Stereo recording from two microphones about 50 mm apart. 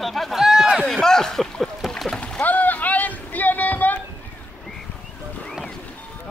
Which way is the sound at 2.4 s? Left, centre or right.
Left.